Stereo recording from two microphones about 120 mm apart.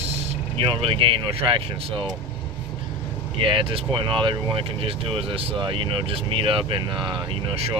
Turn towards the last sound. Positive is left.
turn(degrees=-55)  # may be behind; listen again after turning